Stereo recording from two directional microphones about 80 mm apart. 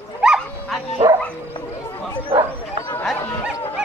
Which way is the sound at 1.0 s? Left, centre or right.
Right.